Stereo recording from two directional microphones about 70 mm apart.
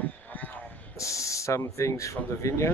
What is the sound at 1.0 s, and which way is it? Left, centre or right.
Speech, left.